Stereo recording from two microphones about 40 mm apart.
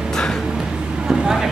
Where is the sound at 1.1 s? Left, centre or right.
Centre.